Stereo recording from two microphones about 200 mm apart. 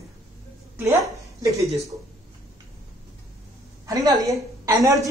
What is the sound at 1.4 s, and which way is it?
Speech, 15° right (ahead or behind).